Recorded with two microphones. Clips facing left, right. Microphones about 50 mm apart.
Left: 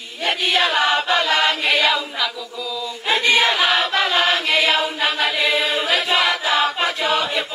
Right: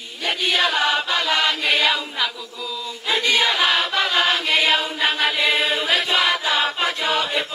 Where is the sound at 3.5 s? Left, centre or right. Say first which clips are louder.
Left 2 dB; centre.